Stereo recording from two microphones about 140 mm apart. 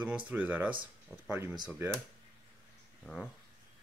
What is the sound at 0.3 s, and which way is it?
Speech, 10° right (ahead or behind).